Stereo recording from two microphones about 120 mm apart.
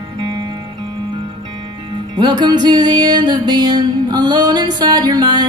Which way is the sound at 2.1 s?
35° right (ahead or behind).